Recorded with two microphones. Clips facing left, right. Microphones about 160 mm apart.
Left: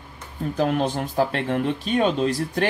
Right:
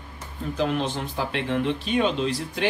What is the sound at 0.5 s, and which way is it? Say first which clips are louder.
Speech: left 3 dB; 45° left (ahead or behind).